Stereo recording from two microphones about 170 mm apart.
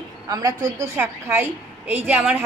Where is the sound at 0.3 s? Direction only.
20° right (ahead or behind).